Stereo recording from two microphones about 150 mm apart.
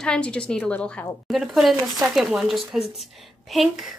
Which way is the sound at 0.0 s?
5° left (ahead or behind).